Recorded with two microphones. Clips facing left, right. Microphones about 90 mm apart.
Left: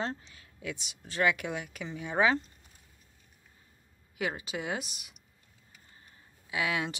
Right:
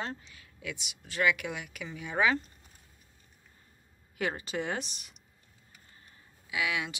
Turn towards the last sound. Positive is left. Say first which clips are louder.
# left 1 dB
turn(degrees=35)  # may be behind; listen again after turning